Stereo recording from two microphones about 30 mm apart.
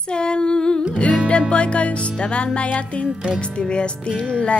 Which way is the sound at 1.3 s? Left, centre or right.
Left.